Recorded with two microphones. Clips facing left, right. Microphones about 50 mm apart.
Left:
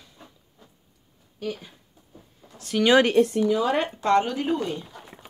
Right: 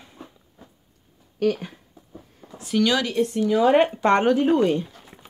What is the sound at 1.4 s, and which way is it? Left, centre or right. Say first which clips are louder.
Speech: right 10 dB; right.